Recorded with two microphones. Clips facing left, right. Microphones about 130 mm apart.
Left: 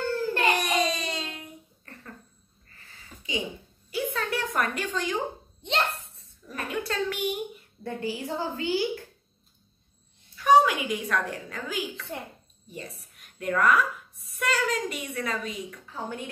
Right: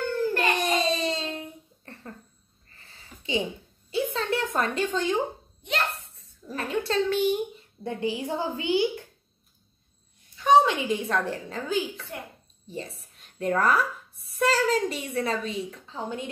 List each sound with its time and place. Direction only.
0.5 s a sound: 25° right (ahead or behind)
5.6 s a child's voice: 25° left (ahead or behind)
6.4 s a woman's voice: 30° right (ahead or behind)
10.3 s a woman's voice: 25° right (ahead or behind)